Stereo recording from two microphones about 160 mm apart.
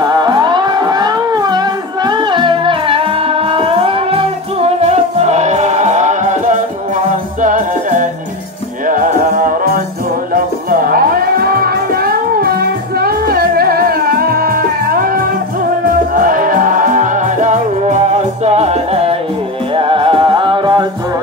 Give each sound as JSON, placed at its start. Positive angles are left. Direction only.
{"t": 0.0, "sound": "music", "side_deg": -25}
{"t": 16.2, "sound": "music", "side_deg": -60}